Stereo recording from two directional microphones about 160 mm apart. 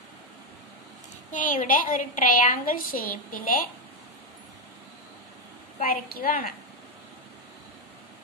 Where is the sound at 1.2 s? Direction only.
55° left (ahead or behind).